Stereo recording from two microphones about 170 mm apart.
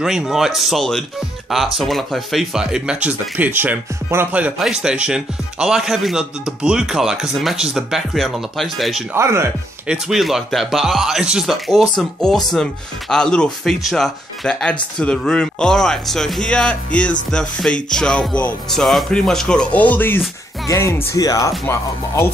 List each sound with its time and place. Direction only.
0.0 s speech: 5° right (ahead or behind)
9.1 s speech: 15° right (ahead or behind)
9.8 s speech: centre (ahead or behind); by 22.3 s 15° left (ahead or behind)